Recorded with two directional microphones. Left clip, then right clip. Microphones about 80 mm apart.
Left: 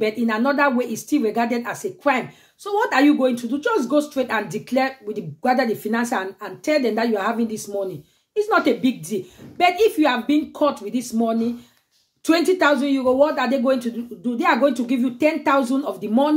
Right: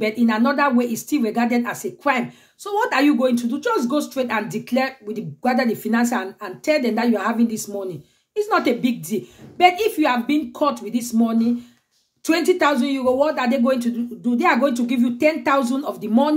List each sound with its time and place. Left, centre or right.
0.0 s speech: right
12.3 s speech: centre